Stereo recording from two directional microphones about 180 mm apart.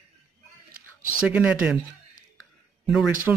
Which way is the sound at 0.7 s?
50° right (ahead or behind).